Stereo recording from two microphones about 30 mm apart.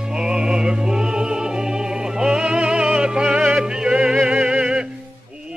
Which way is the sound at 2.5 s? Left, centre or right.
Right.